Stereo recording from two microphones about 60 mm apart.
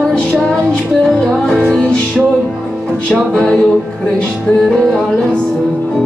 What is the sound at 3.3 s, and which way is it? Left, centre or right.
Music, centre.